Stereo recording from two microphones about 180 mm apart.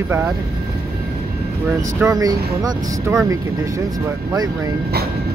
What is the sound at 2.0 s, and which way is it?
Speech, 20° right (ahead or behind).